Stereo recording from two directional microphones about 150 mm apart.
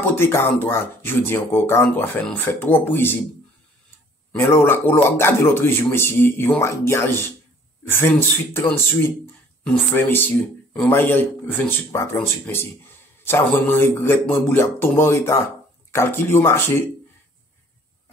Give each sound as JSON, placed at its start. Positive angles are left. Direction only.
{"t": 0.0, "sound": "speech", "side_deg": 15}
{"t": 4.3, "sound": "speech", "side_deg": 15}
{"t": 9.9, "sound": "speech", "side_deg": 15}